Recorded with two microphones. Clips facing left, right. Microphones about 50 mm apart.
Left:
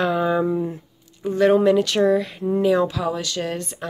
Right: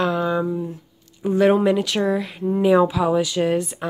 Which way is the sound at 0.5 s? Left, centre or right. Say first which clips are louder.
Left 3 dB; left.